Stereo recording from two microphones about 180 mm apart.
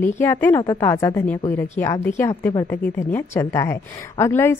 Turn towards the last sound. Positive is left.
turn(degrees=15)  # may be behind; listen again after turning